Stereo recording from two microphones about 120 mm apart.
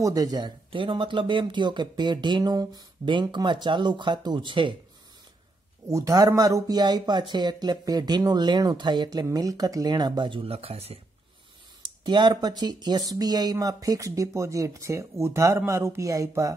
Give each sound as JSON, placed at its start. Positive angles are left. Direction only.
{"t": 0.0, "sound": "speech", "side_deg": -30}
{"t": 5.9, "sound": "speech", "side_deg": -30}
{"t": 11.8, "sound": "speech", "side_deg": -40}